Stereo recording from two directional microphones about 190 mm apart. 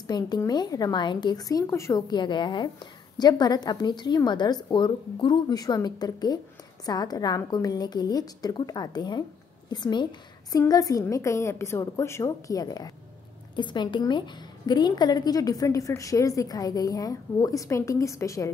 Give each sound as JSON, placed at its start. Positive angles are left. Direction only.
{"t": 0.0, "sound": "a woman's voice", "side_deg": 20}